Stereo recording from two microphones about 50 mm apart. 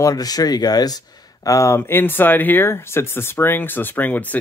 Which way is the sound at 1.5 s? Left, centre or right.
Left.